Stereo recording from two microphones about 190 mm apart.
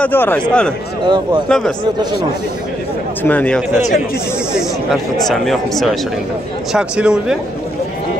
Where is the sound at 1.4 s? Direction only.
5° left (ahead or behind).